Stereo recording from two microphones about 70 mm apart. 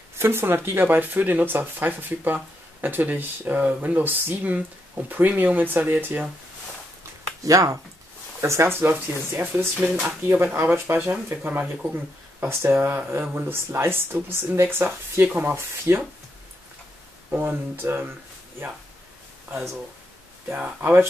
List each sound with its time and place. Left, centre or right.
0.2 s speech: right
7.0 s a sound: right
8.4 s speech: right
11.4 s speech: centre
12.4 s speech: right
17.3 s speech: right
20.4 s speech: right